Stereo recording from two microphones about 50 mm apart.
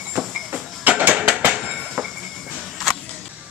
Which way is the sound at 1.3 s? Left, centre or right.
Right.